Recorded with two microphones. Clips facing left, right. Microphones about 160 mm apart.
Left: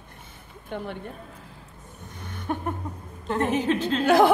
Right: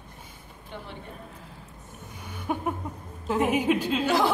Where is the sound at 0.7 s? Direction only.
55° left (ahead or behind).